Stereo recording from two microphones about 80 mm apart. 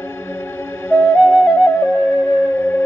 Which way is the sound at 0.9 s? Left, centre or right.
Left.